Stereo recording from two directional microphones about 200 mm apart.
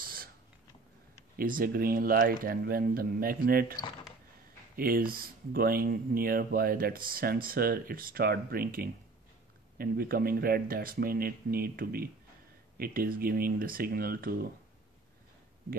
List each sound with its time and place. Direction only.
0.0 s a sound: 45° right (ahead or behind)
1.3 s speech: 45° right (ahead or behind)
4.7 s speech: 45° right (ahead or behind)